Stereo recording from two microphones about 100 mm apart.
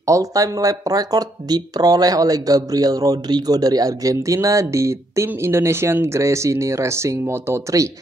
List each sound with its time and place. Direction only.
0.0 s speech: 35° right (ahead or behind)